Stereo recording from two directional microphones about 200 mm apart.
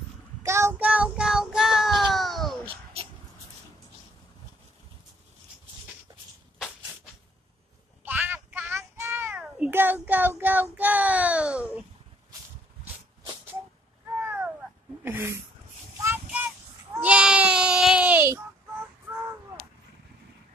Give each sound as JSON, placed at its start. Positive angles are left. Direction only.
{"t": 0.4, "sound": "child singing", "side_deg": -15}
{"t": 2.1, "sound": "babbling", "side_deg": 0}
{"t": 2.6, "sound": "a sound", "side_deg": -30}
{"t": 8.0, "sound": "child singing", "side_deg": -10}
{"t": 14.2, "sound": "a sound", "side_deg": -10}
{"t": 16.0, "sound": "child singing", "side_deg": -10}